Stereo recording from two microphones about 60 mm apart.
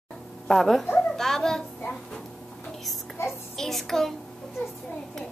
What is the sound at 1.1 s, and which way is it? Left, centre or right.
Child singing, centre.